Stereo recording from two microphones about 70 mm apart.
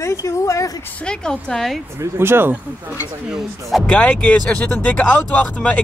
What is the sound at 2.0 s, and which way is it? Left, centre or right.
Speech, right.